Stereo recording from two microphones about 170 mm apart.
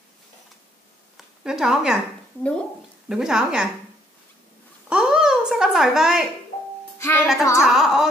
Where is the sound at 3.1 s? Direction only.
5° right (ahead or behind).